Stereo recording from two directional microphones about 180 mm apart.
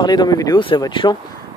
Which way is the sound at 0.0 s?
25° left (ahead or behind).